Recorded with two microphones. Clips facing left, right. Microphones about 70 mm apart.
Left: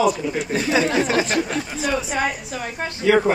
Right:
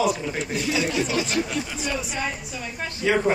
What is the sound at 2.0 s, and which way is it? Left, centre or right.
Speech, left.